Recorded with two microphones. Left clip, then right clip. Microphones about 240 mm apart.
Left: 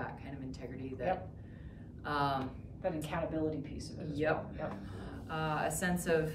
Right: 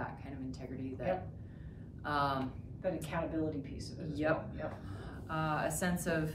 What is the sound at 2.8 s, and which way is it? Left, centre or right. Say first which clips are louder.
A woman's voice: even; centre.